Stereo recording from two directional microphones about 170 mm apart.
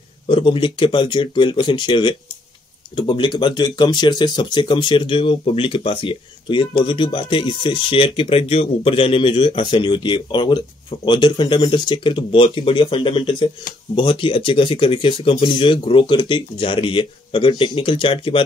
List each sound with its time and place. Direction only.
0.3 s speech: 30° left (ahead or behind)